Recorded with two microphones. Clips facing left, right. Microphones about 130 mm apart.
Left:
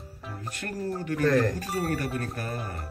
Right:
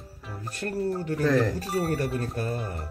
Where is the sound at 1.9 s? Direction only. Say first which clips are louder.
Right 2 dB; 25° right (ahead or behind).